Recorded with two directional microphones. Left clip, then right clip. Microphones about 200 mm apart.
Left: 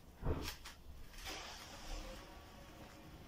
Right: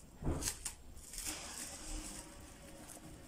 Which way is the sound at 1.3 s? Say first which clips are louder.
Right 2 dB; centre (ahead or behind).